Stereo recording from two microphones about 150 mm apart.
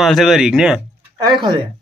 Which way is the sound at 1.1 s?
30° right (ahead or behind).